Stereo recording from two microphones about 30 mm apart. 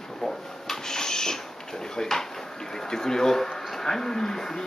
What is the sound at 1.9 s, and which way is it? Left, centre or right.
A man's voice, centre.